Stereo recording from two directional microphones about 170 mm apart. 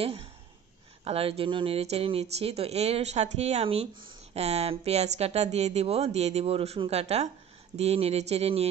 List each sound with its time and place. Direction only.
1.0 s speech: 35° right (ahead or behind)